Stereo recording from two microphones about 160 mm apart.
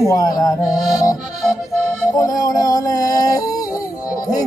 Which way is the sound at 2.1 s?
20° left (ahead or behind).